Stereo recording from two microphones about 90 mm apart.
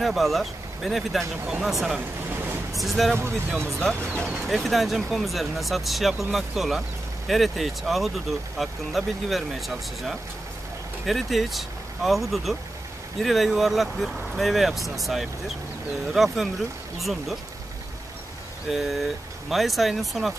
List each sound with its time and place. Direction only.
0.0 s speech: centre (ahead or behind)
1.4 s speech: 10° right (ahead or behind)
1.7 s speech: centre (ahead or behind)
2.0 s a sound: 20° right (ahead or behind)
2.8 s speech: centre (ahead or behind)
18.7 s speech: centre (ahead or behind)